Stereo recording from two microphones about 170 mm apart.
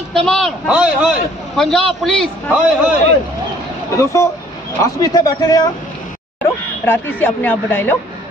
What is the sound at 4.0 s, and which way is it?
A man's voice, 15° left (ahead or behind).